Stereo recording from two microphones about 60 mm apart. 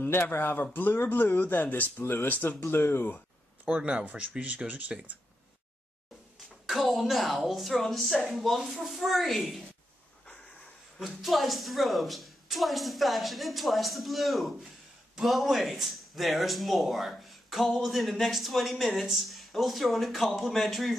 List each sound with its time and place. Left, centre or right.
0.1 s speech: left
2.6 s speech: left
3.6 s speech: right
6.6 s speech: centre
11.0 s speech: centre